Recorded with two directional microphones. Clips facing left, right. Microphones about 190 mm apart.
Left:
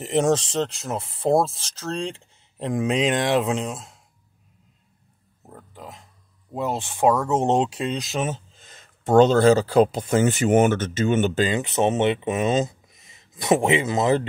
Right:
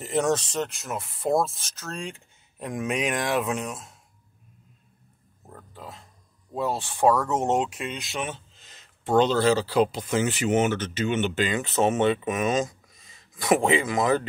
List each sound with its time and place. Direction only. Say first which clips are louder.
0.0 s speech: left 4 dB; 25° left (ahead or behind)
5.5 s a sound: left 1 dB; 15° left (ahead or behind)
6.5 s speech: left 1 dB; 20° left (ahead or behind); by 11.5 s 40° left (ahead or behind)
11.5 s speech: left 2 dB; 20° left (ahead or behind)